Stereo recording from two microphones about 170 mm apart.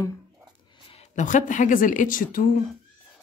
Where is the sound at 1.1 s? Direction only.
50° left (ahead or behind).